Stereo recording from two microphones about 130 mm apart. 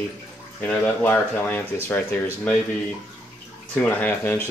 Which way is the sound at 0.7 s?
10° left (ahead or behind).